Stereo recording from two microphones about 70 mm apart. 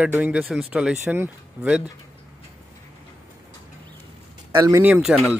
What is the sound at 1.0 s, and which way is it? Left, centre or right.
Speech, right.